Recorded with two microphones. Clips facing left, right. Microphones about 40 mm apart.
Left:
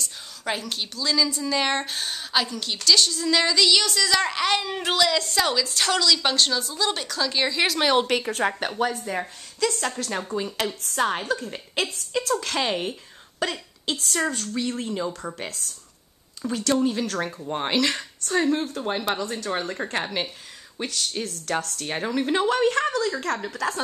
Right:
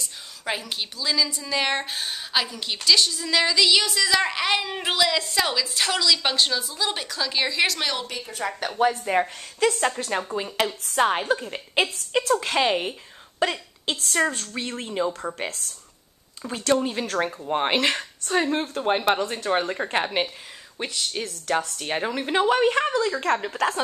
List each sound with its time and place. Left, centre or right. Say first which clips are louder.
0.0 s a woman's voice: left 1 dB; centre
8.1 s a woman's voice: left 8 dB; left
8.9 s speech: right 6 dB; right
9.7 s a woman's voice: right 5 dB; right
13.4 s a sound: right 3 dB; right
14.1 s a woman's voice: right 3 dB; right
16.4 s a woman's voice: even; right
23.2 s speech: right 4 dB; right